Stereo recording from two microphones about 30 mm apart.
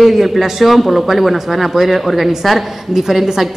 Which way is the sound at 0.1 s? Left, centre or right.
Centre.